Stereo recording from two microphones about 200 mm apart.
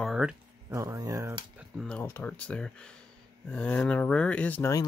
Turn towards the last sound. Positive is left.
turn(degrees=10)  # may be behind; listen again after turning